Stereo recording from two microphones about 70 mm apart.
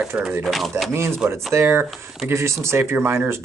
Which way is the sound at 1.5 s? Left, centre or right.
Right.